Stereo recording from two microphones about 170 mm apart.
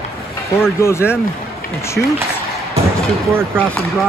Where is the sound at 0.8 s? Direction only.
15° left (ahead or behind).